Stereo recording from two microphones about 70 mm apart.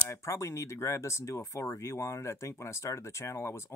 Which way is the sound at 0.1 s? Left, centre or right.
Left.